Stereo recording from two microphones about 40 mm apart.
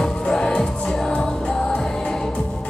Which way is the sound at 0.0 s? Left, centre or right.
Centre.